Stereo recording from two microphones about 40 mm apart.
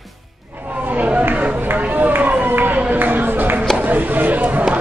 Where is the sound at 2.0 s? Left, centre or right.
Right.